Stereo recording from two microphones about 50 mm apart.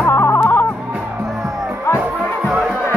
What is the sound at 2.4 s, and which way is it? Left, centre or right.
Music, centre.